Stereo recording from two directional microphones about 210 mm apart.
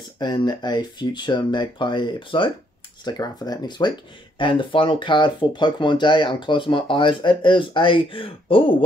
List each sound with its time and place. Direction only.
0.2 s speech: 20° left (ahead or behind)